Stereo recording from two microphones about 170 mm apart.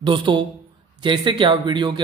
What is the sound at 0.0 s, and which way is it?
Speech, 30° right (ahead or behind).